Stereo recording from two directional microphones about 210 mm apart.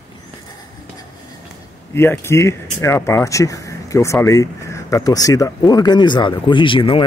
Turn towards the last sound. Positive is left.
turn(degrees=25)  # may be behind; listen again after turning